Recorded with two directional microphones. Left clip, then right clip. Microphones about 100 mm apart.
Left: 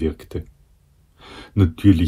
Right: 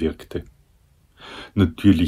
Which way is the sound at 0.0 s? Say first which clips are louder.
Even; 15° right (ahead or behind).